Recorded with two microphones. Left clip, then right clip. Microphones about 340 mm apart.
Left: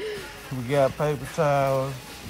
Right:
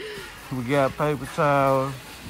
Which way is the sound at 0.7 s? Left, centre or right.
Centre.